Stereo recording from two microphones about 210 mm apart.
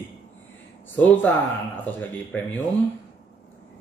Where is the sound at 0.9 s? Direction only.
10° left (ahead or behind).